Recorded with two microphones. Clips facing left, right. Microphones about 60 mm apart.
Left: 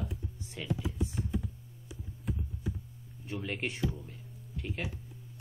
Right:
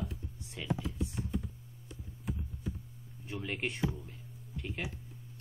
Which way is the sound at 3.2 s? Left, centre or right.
Centre.